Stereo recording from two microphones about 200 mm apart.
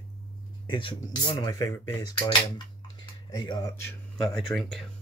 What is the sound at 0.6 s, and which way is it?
Speech, 25° left (ahead or behind).